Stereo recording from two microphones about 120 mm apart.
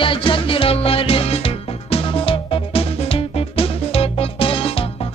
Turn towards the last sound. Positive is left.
turn(degrees=50)  # may be behind; listen again after turning